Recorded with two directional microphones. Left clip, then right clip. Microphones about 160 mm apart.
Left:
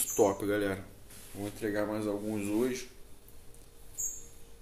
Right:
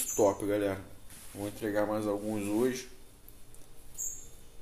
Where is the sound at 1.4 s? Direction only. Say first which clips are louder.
Right 2 dB; 5° left (ahead or behind).